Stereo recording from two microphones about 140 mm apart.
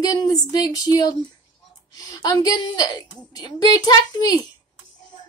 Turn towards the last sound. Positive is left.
turn(degrees=30)  # may be behind; listen again after turning